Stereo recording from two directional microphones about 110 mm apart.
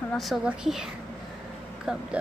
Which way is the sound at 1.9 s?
5° right (ahead or behind).